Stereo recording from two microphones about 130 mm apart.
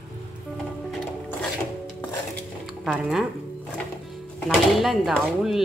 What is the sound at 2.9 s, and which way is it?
Speech, 5° right (ahead or behind).